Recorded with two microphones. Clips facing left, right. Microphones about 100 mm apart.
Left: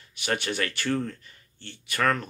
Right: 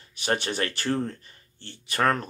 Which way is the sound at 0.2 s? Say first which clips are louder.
Right 1 dB; 30° right (ahead or behind).